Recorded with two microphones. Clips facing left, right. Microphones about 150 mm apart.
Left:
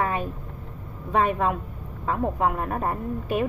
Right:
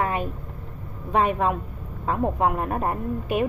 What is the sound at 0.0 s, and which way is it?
Vehicle, 10° right (ahead or behind).